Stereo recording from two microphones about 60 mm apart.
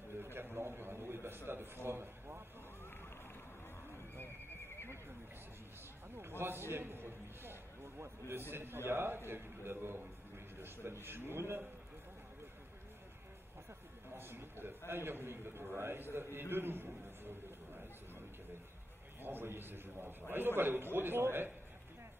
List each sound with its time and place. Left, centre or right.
0.2 s a man's voice: right
6.7 s a man's voice: right
14.1 s a sound: right
14.9 s a man's voice: right
19.2 s a man's voice: right